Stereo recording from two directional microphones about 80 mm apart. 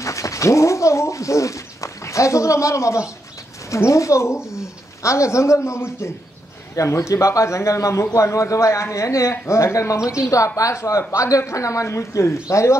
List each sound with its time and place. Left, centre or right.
0.0 s a man's voice: left